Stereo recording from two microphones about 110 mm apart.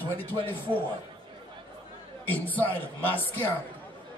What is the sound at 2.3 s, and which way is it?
Speech, 15° left (ahead or behind).